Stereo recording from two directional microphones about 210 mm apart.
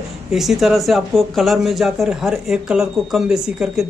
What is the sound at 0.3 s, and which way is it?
Speech, centre (ahead or behind).